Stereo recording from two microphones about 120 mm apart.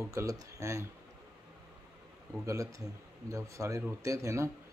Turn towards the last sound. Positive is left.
turn(degrees=-25)  # may be behind; listen again after turning